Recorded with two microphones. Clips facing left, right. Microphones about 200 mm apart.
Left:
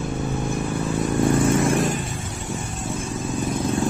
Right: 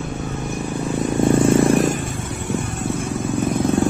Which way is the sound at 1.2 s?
25° right (ahead or behind).